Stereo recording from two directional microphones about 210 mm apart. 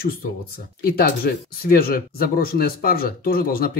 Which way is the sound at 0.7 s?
45° left (ahead or behind).